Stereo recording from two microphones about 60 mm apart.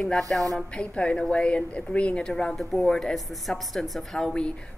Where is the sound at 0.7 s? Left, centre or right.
Centre.